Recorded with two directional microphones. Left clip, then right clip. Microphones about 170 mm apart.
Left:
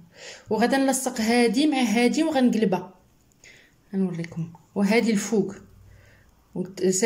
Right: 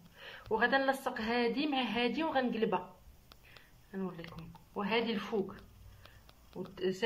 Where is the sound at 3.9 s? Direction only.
20° left (ahead or behind).